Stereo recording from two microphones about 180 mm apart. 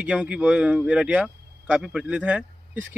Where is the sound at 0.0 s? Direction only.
5° right (ahead or behind).